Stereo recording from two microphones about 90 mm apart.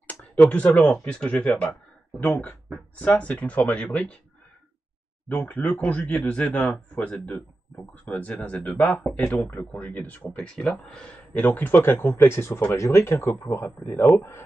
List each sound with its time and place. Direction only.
0.0 s a sound: 15° left (ahead or behind)
1.0 s speech: 10° left (ahead or behind)
5.7 s speech: 15° left (ahead or behind)